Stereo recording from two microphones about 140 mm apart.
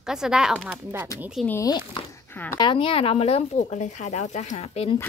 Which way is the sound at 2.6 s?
35° left (ahead or behind).